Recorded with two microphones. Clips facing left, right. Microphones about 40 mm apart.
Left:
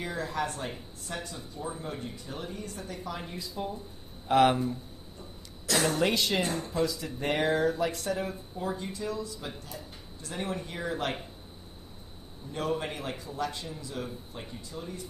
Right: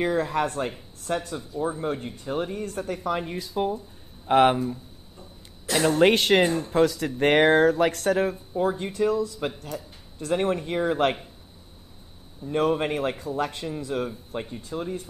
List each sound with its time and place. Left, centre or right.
0.0 s speech: right
4.3 s speech: right
5.7 s a sound: right
5.9 s speech: right
8.3 s speech: right
12.4 s speech: right